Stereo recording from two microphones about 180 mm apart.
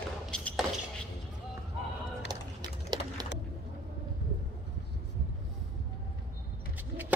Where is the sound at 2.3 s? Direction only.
20° right (ahead or behind).